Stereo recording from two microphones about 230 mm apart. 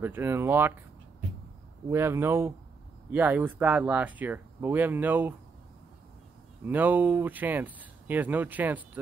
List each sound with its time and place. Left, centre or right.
0.0 s speech: centre
1.9 s speech: centre
6.6 s speech: centre